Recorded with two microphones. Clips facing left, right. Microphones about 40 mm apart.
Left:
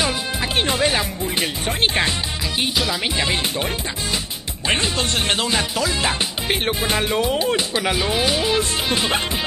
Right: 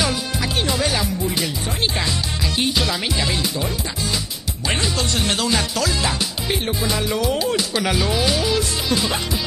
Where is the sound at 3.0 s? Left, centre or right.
Left.